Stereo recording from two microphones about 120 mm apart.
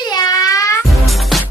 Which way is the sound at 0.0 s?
35° left (ahead or behind).